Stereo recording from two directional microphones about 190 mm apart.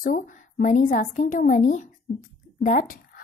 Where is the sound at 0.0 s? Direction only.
45° left (ahead or behind).